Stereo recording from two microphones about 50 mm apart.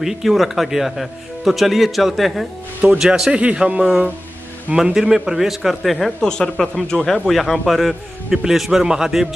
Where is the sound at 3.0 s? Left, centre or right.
Centre.